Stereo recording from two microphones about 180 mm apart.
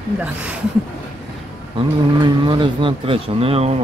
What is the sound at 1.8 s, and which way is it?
Speech, 30° right (ahead or behind).